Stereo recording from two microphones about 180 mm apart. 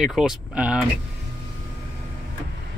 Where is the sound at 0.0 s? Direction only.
5° right (ahead or behind).